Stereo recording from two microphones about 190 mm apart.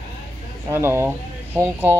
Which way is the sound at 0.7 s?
15° right (ahead or behind).